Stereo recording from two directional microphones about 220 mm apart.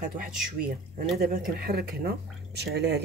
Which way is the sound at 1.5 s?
45° right (ahead or behind).